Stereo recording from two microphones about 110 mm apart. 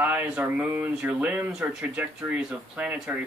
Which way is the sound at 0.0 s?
15° right (ahead or behind).